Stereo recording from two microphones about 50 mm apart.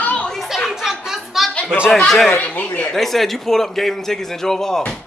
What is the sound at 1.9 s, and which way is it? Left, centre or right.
Speech, centre.